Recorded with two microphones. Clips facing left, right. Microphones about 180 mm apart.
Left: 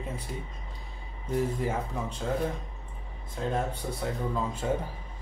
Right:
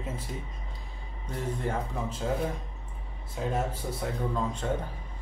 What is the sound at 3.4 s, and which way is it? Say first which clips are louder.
Speech: even; 5° right (ahead or behind).